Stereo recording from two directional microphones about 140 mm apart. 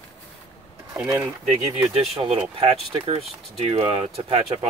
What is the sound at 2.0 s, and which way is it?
Speech, 45° right (ahead or behind).